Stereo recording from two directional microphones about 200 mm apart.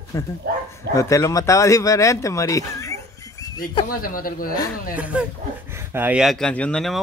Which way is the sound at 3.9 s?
45° left (ahead or behind).